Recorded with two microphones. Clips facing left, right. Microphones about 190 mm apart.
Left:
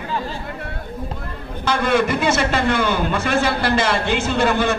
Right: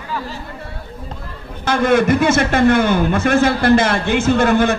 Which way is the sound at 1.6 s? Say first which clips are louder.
Right 4 dB; 50° right (ahead or behind).